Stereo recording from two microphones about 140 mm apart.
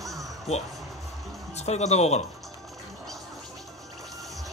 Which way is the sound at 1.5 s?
50° left (ahead or behind).